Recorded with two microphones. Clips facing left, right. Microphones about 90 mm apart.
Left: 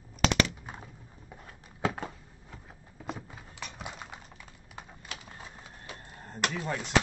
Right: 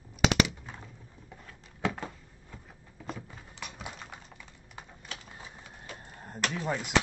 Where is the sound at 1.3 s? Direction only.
20° left (ahead or behind); by 5.5 s centre (ahead or behind).